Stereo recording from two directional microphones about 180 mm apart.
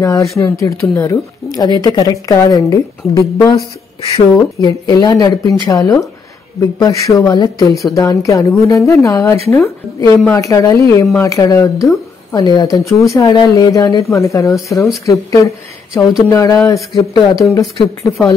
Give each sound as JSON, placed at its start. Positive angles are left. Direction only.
{"t": 0.0, "sound": "a woman's voice", "side_deg": 15}